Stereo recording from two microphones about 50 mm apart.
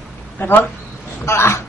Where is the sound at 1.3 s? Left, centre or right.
Left.